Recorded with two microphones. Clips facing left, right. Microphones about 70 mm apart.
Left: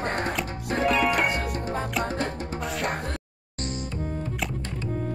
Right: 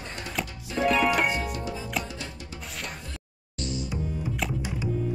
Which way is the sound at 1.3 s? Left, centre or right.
Left.